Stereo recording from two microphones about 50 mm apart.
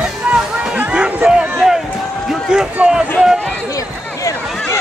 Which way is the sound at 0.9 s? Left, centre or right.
Centre.